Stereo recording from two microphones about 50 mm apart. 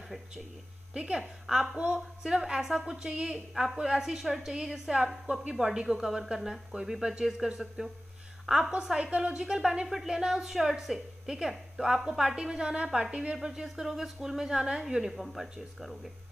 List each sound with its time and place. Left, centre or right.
0.9 s a woman's voice: centre